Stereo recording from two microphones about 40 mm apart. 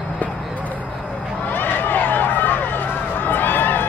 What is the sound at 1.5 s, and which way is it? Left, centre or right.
Run, left.